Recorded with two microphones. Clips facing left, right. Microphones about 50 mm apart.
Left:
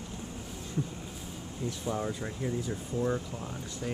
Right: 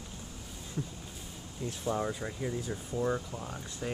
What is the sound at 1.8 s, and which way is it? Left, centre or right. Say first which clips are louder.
Speech: right 2 dB; centre.